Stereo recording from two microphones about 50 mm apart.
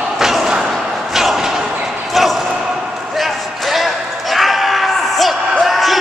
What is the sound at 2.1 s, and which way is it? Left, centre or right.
Basketball bounce, centre.